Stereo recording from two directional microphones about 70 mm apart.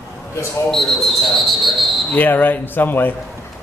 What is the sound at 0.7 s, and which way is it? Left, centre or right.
Speech, centre.